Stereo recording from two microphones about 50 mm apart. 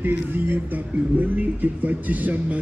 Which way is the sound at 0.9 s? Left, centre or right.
Right.